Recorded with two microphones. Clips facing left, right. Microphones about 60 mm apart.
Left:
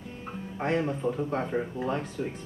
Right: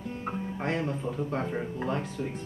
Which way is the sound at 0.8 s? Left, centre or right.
Centre.